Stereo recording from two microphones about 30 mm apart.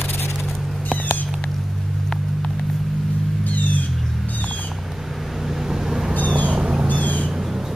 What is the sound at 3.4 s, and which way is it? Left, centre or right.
Music, left.